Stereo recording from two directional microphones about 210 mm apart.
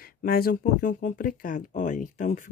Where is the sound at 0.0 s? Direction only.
45° left (ahead or behind).